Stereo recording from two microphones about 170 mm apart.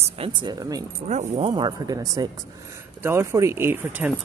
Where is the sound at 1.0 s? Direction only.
40° right (ahead or behind).